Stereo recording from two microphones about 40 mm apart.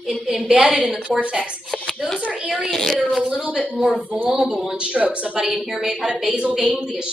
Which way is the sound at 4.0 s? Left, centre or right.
Right.